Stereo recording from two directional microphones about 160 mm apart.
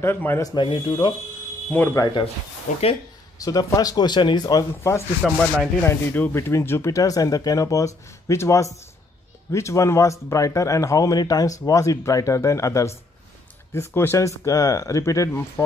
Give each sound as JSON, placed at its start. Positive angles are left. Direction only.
{"t": 0.0, "sound": "speech", "side_deg": 15}
{"t": 1.7, "sound": "speech", "side_deg": 15}
{"t": 2.7, "sound": "speech", "side_deg": 50}
{"t": 3.3, "sound": "speech", "side_deg": 25}
{"t": 5.2, "sound": "rub", "side_deg": 0}
{"t": 5.9, "sound": "speech", "side_deg": 15}